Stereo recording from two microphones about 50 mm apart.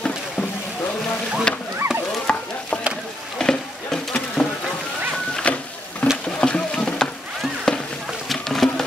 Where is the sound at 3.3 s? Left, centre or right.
Centre.